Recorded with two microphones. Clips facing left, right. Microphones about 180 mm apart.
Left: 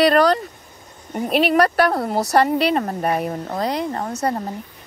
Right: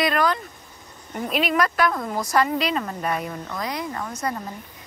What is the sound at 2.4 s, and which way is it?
Speech, 65° left (ahead or behind).